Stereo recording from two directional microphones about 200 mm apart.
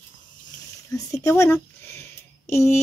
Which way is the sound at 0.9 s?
15° left (ahead or behind).